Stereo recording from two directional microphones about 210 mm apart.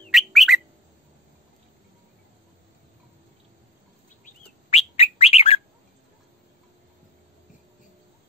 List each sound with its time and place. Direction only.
0.1 s bird: centre (ahead or behind)
4.2 s bird: 30° left (ahead or behind)